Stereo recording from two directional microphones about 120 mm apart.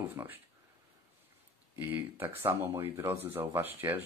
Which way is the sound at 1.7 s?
20° right (ahead or behind).